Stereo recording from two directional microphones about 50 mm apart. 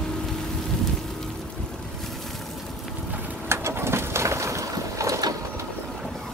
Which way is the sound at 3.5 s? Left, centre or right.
Right.